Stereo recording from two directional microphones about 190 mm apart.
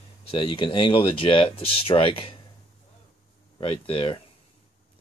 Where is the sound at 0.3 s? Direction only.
25° left (ahead or behind).